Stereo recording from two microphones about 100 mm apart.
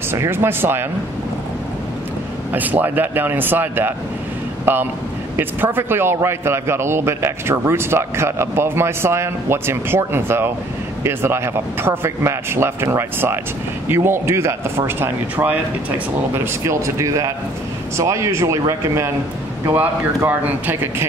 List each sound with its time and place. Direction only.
0.1 s a man's voice: 25° right (ahead or behind)
2.5 s a man's voice: 15° right (ahead or behind)
5.3 s a man's voice: 20° right (ahead or behind)